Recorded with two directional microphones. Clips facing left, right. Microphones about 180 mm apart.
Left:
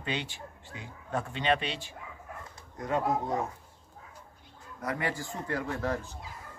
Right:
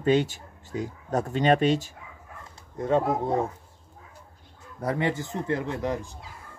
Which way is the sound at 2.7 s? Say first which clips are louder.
Right 5 dB; 30° right (ahead or behind).